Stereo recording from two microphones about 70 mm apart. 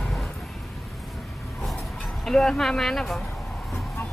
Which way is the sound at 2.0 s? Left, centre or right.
Centre.